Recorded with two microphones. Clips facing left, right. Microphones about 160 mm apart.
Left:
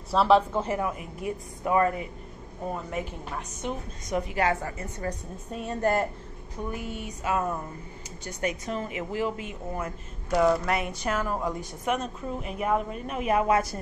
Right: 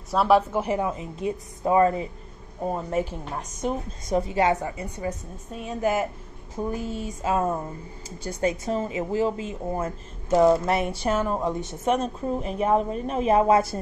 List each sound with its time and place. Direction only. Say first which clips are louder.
0.1 s speech: right 1 dB; 5° right (ahead or behind)
0.7 s a woman's voice: right 3 dB; 25° right (ahead or behind)
5.5 s a woman's voice: right 1 dB; centre (ahead or behind)
6.6 s a woman's voice: right 5 dB; 35° right (ahead or behind)